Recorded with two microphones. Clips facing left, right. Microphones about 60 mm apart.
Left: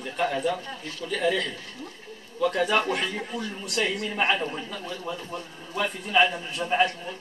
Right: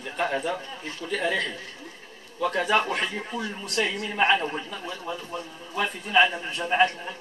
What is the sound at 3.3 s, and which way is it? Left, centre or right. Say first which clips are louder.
A man's voice: right 1 dB; right.